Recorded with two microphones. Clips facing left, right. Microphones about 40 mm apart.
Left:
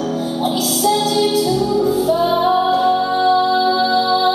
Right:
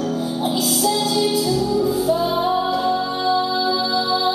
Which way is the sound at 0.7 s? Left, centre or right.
Centre.